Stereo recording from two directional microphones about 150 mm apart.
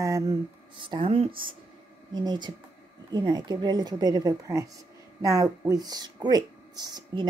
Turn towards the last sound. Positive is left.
turn(degrees=-30)  # may be behind; listen again after turning